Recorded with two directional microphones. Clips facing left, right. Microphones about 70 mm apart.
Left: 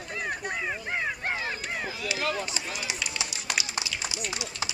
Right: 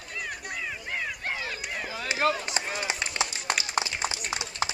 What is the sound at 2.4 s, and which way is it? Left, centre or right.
Run, right.